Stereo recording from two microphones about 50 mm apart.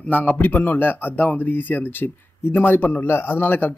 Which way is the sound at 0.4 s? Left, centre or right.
Left.